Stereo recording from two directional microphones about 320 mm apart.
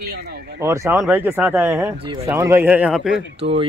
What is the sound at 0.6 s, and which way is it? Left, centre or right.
Speech, centre.